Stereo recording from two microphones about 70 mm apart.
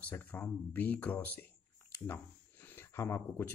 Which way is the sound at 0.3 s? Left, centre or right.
Left.